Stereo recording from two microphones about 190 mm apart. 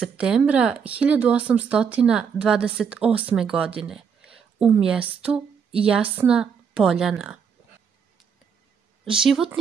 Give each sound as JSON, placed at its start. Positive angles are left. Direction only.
{"t": 0.0, "sound": "speech", "side_deg": -5}
{"t": 3.8, "sound": "a sound", "side_deg": -5}
{"t": 4.8, "sound": "speech", "side_deg": -5}
{"t": 9.0, "sound": "speech", "side_deg": -5}